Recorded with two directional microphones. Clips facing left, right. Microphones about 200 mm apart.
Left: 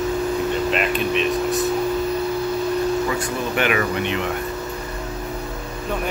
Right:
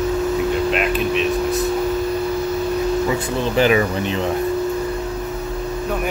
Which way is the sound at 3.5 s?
30° right (ahead or behind).